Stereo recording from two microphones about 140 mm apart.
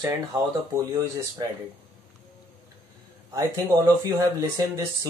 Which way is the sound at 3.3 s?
25° right (ahead or behind).